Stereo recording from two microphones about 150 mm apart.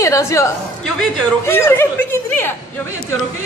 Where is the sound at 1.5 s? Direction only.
15° left (ahead or behind).